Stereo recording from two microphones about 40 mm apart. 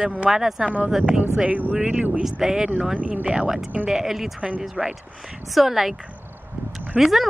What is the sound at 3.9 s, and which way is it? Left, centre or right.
Speech, centre.